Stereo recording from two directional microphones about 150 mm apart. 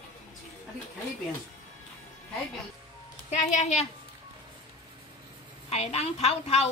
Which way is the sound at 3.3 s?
50° left (ahead or behind).